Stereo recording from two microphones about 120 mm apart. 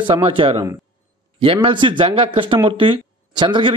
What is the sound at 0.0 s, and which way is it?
A man's voice, 45° right (ahead or behind).